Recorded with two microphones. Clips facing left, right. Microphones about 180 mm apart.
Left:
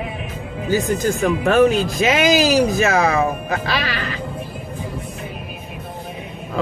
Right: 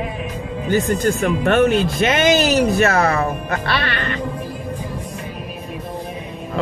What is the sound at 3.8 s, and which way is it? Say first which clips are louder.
Speech: right 1 dB; 90° left.